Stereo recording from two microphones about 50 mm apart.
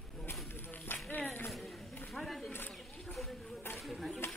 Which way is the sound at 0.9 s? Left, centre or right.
Left.